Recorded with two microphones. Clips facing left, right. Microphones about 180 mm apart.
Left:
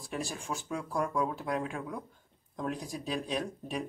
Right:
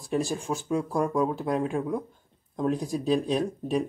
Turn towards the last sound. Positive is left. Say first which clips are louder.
# right 9 dB
turn(degrees=-35)  # may be behind; listen again after turning